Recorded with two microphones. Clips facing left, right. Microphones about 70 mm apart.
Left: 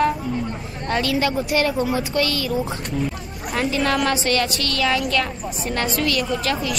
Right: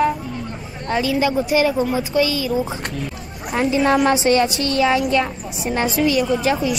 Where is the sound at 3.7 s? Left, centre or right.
Centre.